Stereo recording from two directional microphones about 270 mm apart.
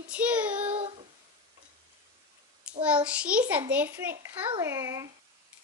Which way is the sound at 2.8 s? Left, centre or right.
Centre.